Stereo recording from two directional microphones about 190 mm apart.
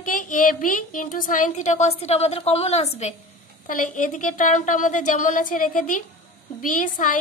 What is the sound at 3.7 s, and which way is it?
A woman's voice, 45° left (ahead or behind).